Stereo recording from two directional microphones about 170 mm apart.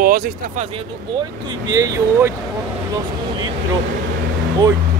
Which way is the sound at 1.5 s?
20° right (ahead or behind).